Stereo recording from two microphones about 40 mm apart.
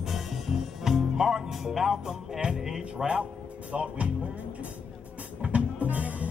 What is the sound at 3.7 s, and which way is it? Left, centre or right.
Speech, right.